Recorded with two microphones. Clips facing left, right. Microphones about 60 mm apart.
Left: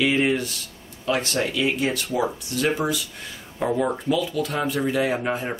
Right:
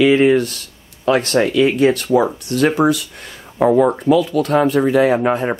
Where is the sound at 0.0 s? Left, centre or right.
Right.